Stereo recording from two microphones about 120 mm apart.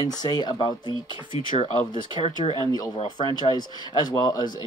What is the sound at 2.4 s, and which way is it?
Speech, 55° left (ahead or behind).